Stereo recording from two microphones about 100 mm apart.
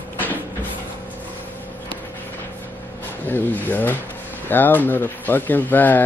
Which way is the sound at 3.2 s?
20° left (ahead or behind).